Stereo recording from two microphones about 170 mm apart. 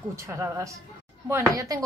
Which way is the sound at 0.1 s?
15° right (ahead or behind).